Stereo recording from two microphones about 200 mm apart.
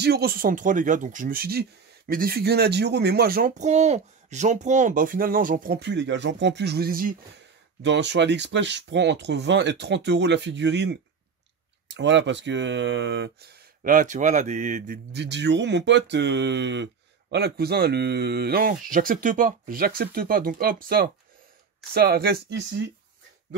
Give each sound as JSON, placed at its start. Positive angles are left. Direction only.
{"t": 0.0, "sound": "speech", "side_deg": -50}
{"t": 7.8, "sound": "speech", "side_deg": -60}
{"t": 15.1, "sound": "speech", "side_deg": -60}